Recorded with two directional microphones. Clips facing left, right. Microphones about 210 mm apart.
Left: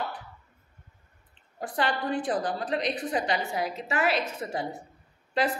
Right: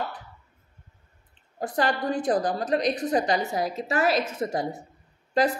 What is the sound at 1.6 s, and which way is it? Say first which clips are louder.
A woman's voice: right 3 dB; 40° right (ahead or behind).